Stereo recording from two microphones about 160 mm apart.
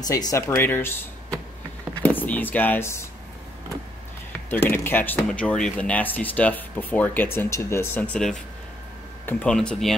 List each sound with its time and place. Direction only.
0.0 s speech: 25° left (ahead or behind)
2.0 s speech: 10° left (ahead or behind)
4.5 s speech: 15° left (ahead or behind)